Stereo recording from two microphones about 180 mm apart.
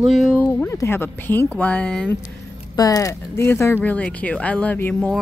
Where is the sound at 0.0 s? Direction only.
Centre (ahead or behind).